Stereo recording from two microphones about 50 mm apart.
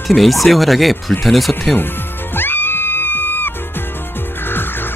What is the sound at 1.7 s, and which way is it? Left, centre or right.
Music, left.